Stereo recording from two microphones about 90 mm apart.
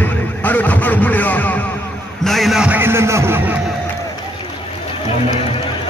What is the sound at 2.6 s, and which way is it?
Speech, 25° right (ahead or behind).